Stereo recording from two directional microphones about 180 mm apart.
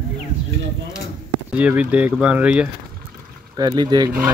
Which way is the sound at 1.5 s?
5° right (ahead or behind).